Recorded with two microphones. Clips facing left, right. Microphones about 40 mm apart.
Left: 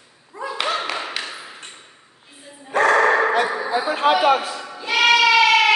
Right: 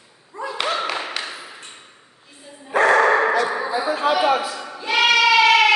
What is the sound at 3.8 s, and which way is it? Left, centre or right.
Speech, left.